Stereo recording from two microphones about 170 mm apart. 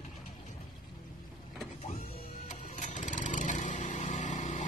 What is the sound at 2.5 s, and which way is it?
Lawn mower, 45° left (ahead or behind).